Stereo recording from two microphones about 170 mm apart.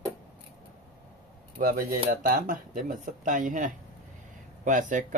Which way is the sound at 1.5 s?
55° right (ahead or behind).